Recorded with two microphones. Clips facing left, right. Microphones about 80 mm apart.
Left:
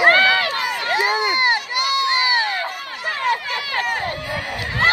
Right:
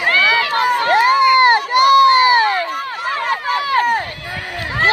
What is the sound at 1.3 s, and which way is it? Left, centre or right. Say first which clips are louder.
Run: right 9 dB; right.